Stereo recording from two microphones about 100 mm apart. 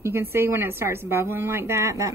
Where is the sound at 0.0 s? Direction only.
25° right (ahead or behind).